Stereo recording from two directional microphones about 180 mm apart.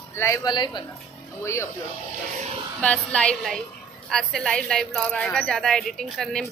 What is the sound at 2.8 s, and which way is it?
A woman's voice, 5° left (ahead or behind).